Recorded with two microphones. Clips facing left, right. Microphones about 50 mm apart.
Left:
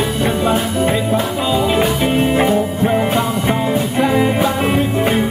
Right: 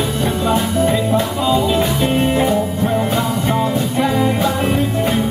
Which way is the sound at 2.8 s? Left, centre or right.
Left.